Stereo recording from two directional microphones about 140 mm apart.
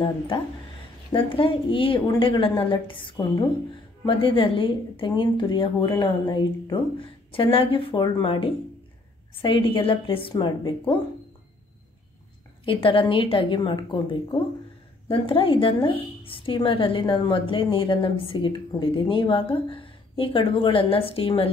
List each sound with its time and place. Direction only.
1.1 s a woman's voice: 40° left (ahead or behind)
12.6 s a woman's voice: 40° left (ahead or behind)